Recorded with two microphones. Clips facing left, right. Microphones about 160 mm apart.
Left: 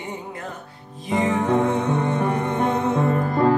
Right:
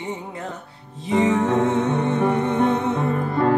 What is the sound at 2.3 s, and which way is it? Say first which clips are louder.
Music: right 3 dB; 20° right (ahead or behind).